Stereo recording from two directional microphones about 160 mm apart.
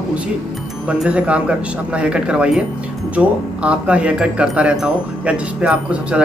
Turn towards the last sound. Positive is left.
turn(degrees=-5)  # may be behind; listen again after turning